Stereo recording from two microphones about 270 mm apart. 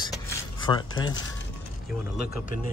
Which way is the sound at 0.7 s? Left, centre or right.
Centre.